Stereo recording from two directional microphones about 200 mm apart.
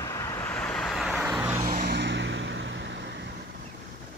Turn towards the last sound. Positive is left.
turn(degrees=-60)  # may be behind; listen again after turning